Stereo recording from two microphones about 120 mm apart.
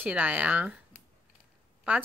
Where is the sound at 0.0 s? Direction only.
10° right (ahead or behind).